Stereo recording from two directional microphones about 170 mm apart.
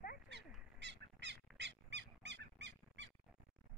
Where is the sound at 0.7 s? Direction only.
90° right.